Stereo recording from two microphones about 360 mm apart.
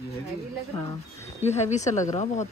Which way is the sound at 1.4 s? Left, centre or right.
Centre.